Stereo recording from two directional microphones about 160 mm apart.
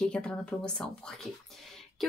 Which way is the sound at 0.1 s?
5° left (ahead or behind).